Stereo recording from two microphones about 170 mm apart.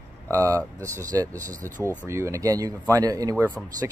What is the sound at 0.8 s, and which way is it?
A man's voice, 20° right (ahead or behind).